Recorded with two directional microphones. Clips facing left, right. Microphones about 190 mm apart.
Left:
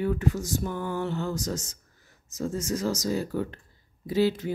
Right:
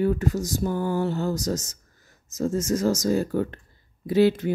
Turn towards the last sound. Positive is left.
turn(degrees=-60)  # may be behind; listen again after turning